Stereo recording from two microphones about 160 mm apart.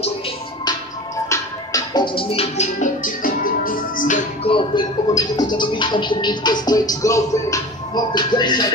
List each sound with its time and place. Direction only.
0.7 s music: 20° left (ahead or behind); by 4.2 s 55° left (ahead or behind)
4.5 s speech: 30° left (ahead or behind)